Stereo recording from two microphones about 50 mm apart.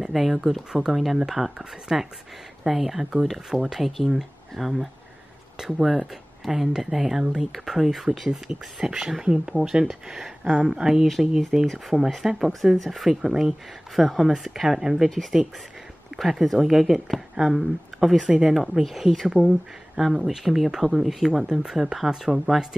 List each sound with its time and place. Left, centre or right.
0.0 s speech: centre
11.9 s speech: centre
12.3 s speech: centre
16.2 s speech: centre